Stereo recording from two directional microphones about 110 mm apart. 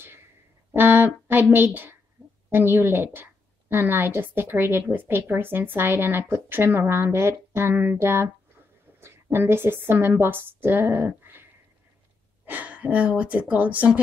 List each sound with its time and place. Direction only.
0.7 s a woman's voice: 20° right (ahead or behind)
12.4 s speech: 15° right (ahead or behind)